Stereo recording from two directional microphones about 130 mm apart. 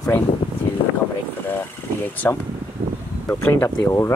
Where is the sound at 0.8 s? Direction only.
45° left (ahead or behind).